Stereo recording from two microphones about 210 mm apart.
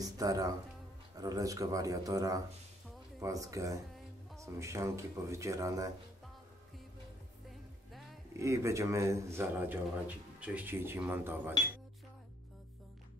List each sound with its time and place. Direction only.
0.0 s a man's voice: 15° right (ahead or behind)
8.3 s a man's voice: 15° right (ahead or behind)